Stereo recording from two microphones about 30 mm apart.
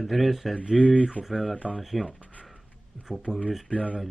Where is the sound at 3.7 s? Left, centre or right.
Left.